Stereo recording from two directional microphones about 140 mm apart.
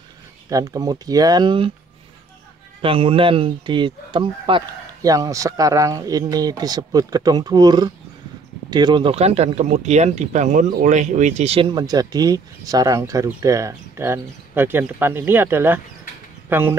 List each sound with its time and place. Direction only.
0.5 s speech: 25° right (ahead or behind)
2.8 s speech: 40° right (ahead or behind)
5.1 s speech: 25° right (ahead or behind)
9.1 s speech: 50° right (ahead or behind)
11.7 s speech: 30° right (ahead or behind)